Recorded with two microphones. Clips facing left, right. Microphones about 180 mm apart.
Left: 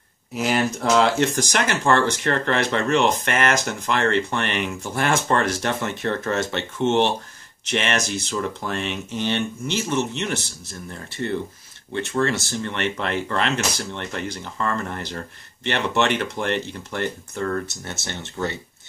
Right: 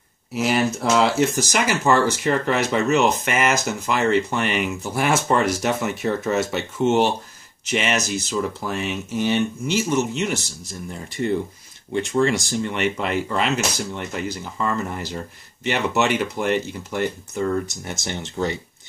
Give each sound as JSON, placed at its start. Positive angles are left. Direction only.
{"t": 0.3, "sound": "speech", "side_deg": 0}